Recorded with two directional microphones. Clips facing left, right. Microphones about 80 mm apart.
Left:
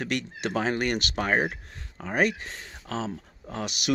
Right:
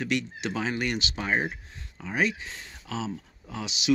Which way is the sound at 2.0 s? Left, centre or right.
Left.